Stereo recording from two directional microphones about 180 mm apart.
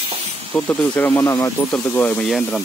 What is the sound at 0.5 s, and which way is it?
Speech, 10° left (ahead or behind).